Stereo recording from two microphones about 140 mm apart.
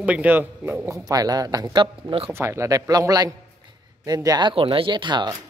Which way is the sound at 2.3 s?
20° right (ahead or behind).